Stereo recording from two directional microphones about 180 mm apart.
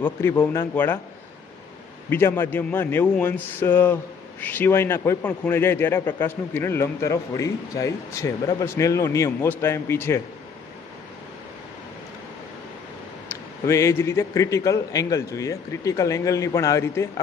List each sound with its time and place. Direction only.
0.0 s a man's voice: 10° left (ahead or behind)
2.0 s a man's voice: 15° left (ahead or behind)
13.7 s a man's voice: 15° left (ahead or behind)